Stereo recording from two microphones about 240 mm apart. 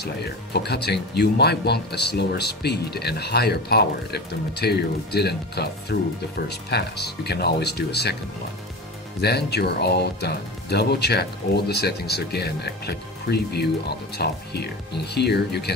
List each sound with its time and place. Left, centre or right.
0.0 s speech: left
9.2 s speech: left